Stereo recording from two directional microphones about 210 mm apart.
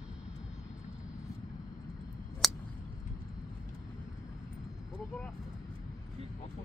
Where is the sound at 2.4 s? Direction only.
Centre (ahead or behind).